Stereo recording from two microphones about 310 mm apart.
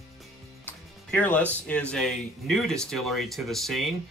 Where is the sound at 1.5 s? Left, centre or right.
Centre.